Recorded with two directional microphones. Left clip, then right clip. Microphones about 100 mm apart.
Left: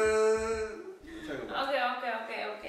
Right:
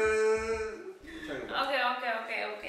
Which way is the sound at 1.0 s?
5° right (ahead or behind).